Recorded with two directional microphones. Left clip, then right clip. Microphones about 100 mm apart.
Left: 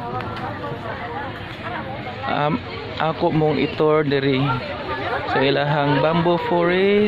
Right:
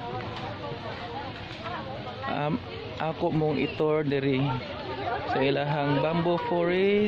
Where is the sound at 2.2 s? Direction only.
25° right (ahead or behind).